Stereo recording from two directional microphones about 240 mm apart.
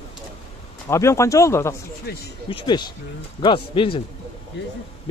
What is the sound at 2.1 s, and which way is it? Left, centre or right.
Speech, left.